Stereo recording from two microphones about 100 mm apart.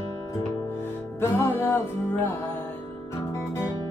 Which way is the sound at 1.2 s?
25° left (ahead or behind).